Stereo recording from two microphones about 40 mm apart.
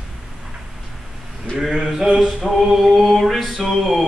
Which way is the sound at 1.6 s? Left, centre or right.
Centre.